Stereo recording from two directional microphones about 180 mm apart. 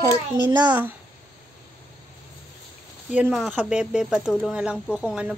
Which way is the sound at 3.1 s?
5° right (ahead or behind).